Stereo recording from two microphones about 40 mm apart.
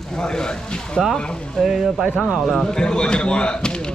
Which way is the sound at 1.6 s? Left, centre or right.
Centre.